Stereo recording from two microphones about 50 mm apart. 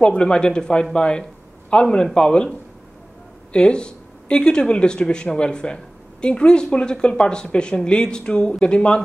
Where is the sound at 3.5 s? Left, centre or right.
Centre.